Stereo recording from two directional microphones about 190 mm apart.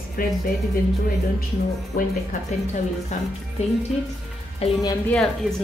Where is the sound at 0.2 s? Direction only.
50° left (ahead or behind).